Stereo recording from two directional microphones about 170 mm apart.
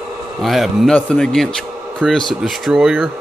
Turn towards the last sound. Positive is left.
turn(degrees=0)  # may be behind; listen again after turning